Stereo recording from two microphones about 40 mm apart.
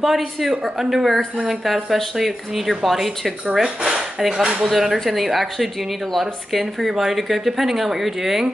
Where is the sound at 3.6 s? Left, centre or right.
Right.